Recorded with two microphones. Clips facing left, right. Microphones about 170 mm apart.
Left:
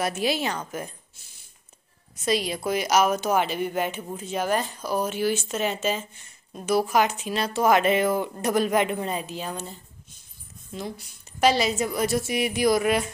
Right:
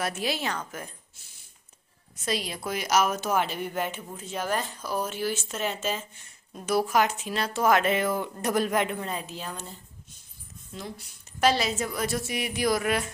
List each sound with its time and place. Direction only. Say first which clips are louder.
0.0 s speech: left 4 dB; 10° left (ahead or behind)
2.2 s speech: left 6 dB; 10° left (ahead or behind)
11.3 s speech: left 3 dB; 15° left (ahead or behind)